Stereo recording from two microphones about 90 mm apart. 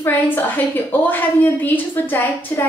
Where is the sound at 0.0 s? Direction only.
20° left (ahead or behind).